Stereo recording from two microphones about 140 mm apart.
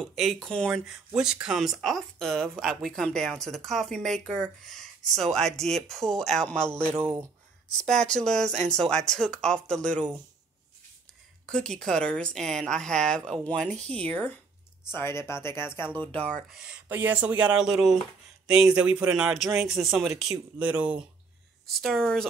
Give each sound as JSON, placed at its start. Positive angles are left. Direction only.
{"t": 0.0, "sound": "speech", "side_deg": 0}
{"t": 7.7, "sound": "speech", "side_deg": 5}
{"t": 11.4, "sound": "speech", "side_deg": 5}
{"t": 16.4, "sound": "speech", "side_deg": -5}
{"t": 21.7, "sound": "speech", "side_deg": 0}